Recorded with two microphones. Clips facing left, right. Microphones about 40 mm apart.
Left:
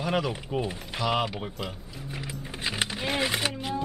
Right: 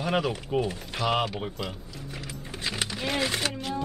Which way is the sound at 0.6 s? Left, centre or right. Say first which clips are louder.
Right 2 dB; centre.